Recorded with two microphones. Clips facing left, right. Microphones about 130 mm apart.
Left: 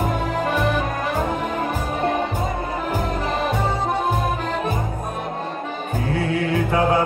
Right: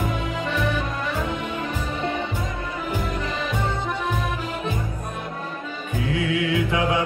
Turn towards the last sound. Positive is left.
turn(degrees=40)  # may be behind; listen again after turning